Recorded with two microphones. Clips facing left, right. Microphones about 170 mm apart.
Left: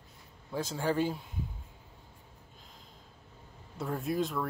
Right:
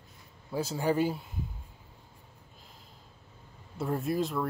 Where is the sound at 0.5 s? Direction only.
10° right (ahead or behind).